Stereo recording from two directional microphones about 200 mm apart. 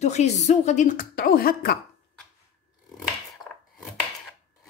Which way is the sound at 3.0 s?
Centre (ahead or behind).